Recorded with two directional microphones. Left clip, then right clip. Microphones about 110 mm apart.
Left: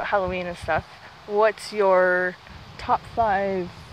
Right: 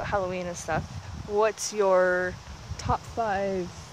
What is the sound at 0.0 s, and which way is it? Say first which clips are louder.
Speech: left 5 dB; centre (ahead or behind).